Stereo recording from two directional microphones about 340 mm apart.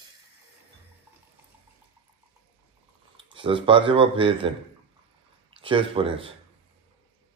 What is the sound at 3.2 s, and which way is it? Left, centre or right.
Speech, centre.